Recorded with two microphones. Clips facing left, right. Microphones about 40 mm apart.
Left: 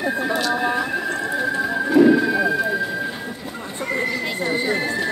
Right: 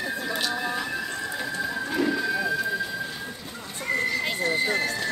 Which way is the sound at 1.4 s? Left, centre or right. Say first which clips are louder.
Left 7 dB; centre.